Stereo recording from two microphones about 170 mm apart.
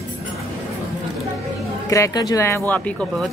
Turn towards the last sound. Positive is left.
turn(degrees=5)  # may be behind; listen again after turning